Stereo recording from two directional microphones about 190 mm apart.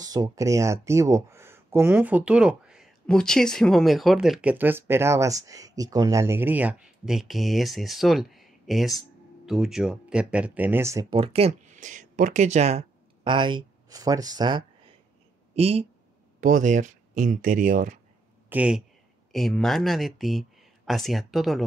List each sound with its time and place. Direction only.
0.0 s speech: 20° right (ahead or behind)
11.1 s speech: 30° right (ahead or behind)
15.5 s speech: 35° right (ahead or behind)
16.3 s speech: 45° right (ahead or behind)
18.5 s speech: 5° right (ahead or behind)